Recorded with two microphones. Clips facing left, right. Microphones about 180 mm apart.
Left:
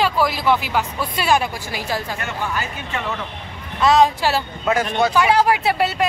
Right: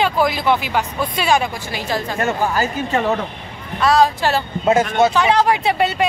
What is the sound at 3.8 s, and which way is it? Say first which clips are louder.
Speech: even; 20° left (ahead or behind).